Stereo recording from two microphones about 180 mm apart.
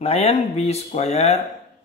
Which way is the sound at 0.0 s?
35° left (ahead or behind).